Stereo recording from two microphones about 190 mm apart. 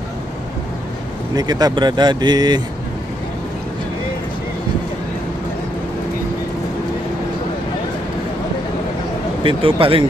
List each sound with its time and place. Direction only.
1.3 s speech: 20° right (ahead or behind)
9.4 s speech: 25° right (ahead or behind)